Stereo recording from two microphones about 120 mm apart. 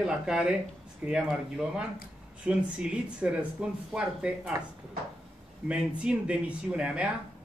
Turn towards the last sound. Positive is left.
turn(degrees=-10)  # may be behind; listen again after turning